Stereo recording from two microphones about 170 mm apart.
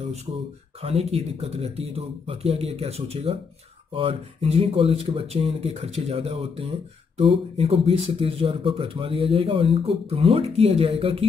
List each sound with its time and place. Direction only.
0.8 s speech: 35° right (ahead or behind)